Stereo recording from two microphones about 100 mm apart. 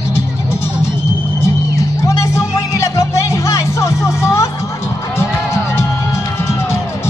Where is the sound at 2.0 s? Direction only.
30° left (ahead or behind).